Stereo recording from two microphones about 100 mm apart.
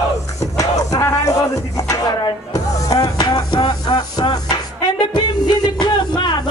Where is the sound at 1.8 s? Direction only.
40° left (ahead or behind).